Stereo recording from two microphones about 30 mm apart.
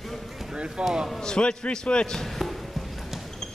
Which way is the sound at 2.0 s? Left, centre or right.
Centre.